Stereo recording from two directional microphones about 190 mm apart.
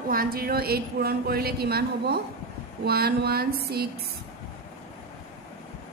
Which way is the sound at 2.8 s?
55° right (ahead or behind).